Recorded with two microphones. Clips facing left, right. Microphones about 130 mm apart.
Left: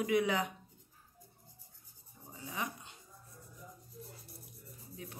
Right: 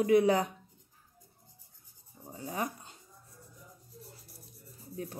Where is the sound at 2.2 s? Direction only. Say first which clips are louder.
Right 5 dB; 40° right (ahead or behind).